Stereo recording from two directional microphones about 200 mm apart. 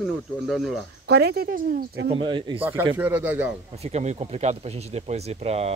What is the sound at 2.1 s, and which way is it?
Speech, 25° right (ahead or behind).